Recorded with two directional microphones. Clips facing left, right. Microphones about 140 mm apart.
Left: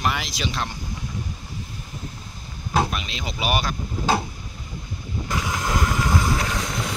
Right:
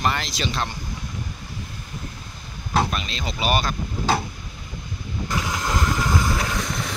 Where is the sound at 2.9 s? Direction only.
10° left (ahead or behind).